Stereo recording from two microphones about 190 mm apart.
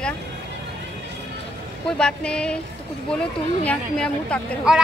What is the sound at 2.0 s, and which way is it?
Speech, 5° left (ahead or behind).